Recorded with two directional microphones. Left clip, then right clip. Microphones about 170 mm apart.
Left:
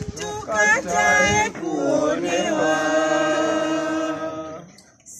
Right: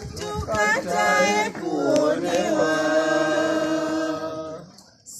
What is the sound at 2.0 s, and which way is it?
Chant, 15° right (ahead or behind).